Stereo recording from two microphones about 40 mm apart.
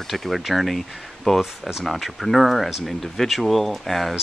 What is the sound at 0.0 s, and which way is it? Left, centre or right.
Speech, centre.